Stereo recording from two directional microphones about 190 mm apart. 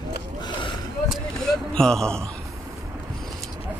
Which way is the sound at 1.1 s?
Centre (ahead or behind).